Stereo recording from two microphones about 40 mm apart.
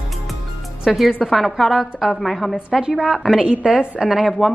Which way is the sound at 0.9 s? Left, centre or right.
Centre.